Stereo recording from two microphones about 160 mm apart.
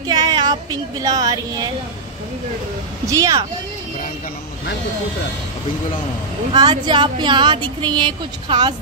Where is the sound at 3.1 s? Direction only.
20° right (ahead or behind).